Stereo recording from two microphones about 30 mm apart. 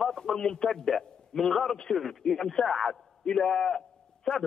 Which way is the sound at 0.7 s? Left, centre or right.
Centre.